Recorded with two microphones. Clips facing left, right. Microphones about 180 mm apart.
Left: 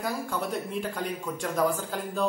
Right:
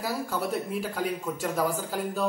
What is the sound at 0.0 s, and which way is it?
A man's voice, 5° right (ahead or behind).